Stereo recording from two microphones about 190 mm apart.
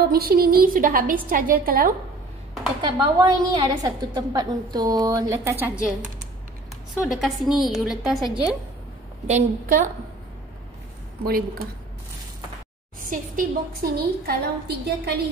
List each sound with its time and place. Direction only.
0.1 s a woman's voice: 50° right (ahead or behind)
2.8 s a woman's voice: 25° right (ahead or behind)
7.0 s a woman's voice: centre (ahead or behind)
9.3 s a woman's voice: 40° right (ahead or behind)
11.2 s a woman's voice: 50° right (ahead or behind)
13.0 s a woman's voice: 45° right (ahead or behind)